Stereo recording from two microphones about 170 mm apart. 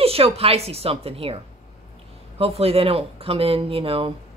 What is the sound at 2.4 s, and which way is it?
Speech, 35° right (ahead or behind).